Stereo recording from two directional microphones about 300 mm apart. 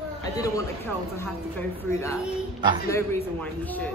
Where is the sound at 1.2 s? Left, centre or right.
Centre.